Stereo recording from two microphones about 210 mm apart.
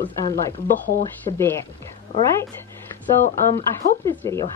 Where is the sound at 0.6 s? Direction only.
40° left (ahead or behind).